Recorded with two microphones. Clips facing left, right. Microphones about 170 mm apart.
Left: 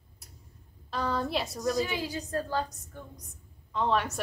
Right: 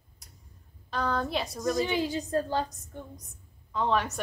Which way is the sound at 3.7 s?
Centre (ahead or behind).